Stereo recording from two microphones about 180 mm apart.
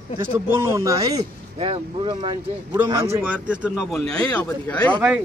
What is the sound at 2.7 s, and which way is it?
Speech, 15° right (ahead or behind).